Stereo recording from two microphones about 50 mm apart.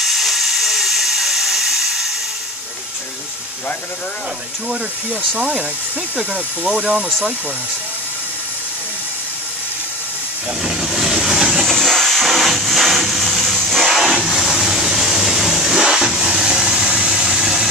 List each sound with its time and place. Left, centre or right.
0.0 s steam: centre
5.4 s speech: centre
10.6 s vehicle: centre
11.5 s a sound: centre